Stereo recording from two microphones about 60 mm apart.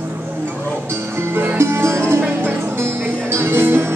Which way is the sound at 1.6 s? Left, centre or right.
Right.